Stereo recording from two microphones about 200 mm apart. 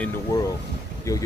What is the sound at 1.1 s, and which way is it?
Speech, 15° left (ahead or behind).